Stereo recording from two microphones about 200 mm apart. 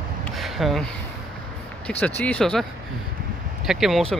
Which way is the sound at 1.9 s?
5° left (ahead or behind).